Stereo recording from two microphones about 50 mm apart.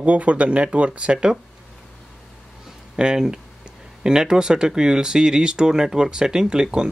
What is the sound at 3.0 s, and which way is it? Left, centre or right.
Speech, centre.